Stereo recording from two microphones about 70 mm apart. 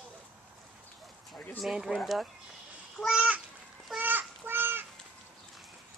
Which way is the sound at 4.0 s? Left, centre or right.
Right.